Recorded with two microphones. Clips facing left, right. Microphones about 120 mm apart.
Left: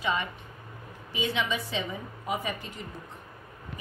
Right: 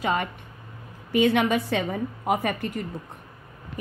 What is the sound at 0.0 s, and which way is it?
A woman's voice, 50° right (ahead or behind).